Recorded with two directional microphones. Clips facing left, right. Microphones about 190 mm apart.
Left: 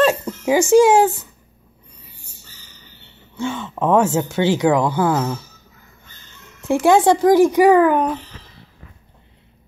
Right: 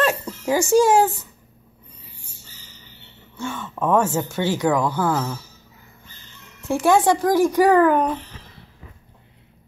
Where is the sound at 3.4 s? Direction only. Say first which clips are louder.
Left 4 dB; 25° left (ahead or behind).